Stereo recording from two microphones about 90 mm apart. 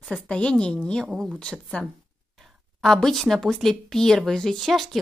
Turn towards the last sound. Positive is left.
turn(degrees=0)  # may be behind; listen again after turning